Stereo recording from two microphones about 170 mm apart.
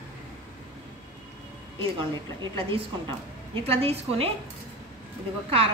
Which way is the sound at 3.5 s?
35° right (ahead or behind).